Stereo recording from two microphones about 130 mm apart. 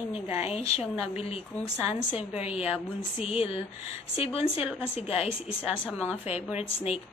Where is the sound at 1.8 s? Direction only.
50° left (ahead or behind).